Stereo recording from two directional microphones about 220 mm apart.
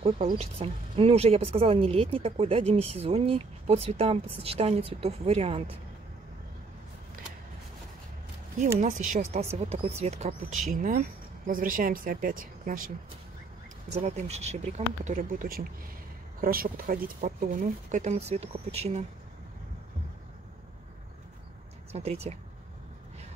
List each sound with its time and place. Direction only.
0.0 s speech: 30° right (ahead or behind)
8.8 s speech: 35° right (ahead or behind)
13.9 s speech: 30° right (ahead or behind)
21.9 s speech: 30° right (ahead or behind)